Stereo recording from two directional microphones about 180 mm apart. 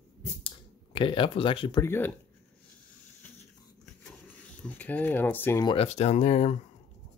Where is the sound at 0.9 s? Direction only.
30° left (ahead or behind).